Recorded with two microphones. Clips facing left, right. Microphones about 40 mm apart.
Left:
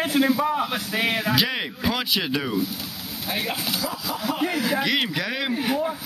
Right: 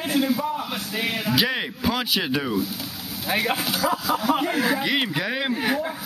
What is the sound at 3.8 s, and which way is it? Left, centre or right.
Speech, right.